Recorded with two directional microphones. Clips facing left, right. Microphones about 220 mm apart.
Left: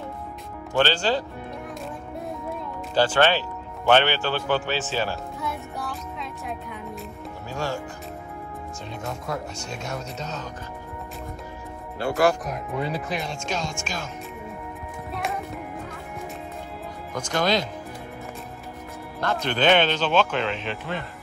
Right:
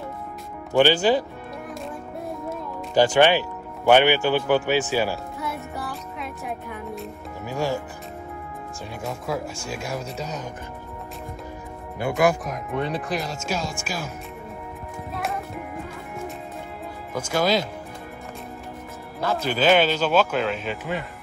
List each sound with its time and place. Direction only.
0.7 s a man's voice: 15° right (ahead or behind)
2.9 s a man's voice: 15° right (ahead or behind)
5.4 s music: centre (ahead or behind)
7.4 s music: 15° right (ahead or behind)
9.0 s a man's voice: 5° right (ahead or behind)
12.0 s a man's voice: 15° right (ahead or behind)
12.4 s speech: 5° left (ahead or behind)
17.1 s a man's voice: 5° right (ahead or behind)
19.2 s speech: 5° right (ahead or behind)